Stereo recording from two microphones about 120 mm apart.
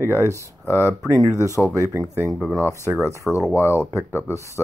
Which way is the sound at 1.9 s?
20° right (ahead or behind).